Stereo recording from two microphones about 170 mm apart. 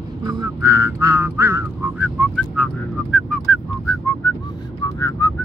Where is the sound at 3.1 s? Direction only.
5° left (ahead or behind).